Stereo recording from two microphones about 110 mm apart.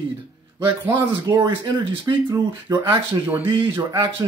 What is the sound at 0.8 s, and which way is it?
Speech, 40° right (ahead or behind).